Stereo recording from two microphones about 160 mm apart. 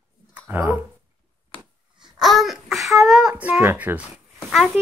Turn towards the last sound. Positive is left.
turn(degrees=0)  # may be behind; listen again after turning